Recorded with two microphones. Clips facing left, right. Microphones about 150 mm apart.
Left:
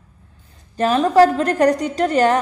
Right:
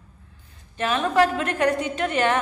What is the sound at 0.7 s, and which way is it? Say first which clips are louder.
A woman's voice: left 7 dB; 40° left (ahead or behind).